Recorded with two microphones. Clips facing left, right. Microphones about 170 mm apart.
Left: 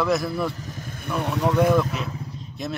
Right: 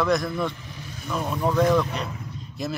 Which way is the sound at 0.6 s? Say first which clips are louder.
Left 4 dB; 45° left (ahead or behind).